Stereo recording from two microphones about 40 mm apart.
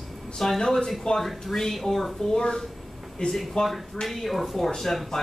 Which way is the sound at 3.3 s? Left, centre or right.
Centre.